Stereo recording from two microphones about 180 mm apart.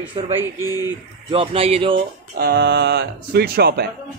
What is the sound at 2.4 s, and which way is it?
Speech, 65° right (ahead or behind).